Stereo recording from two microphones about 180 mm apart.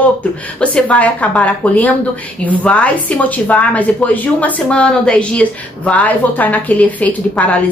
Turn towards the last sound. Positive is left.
turn(degrees=10)  # may be behind; listen again after turning